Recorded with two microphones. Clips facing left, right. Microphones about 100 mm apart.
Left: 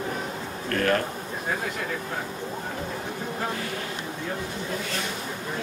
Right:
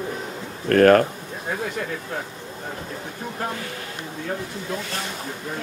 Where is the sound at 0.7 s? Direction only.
55° right (ahead or behind).